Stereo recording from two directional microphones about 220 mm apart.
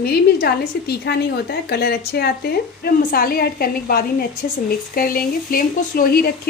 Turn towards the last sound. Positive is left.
turn(degrees=45)  # may be behind; listen again after turning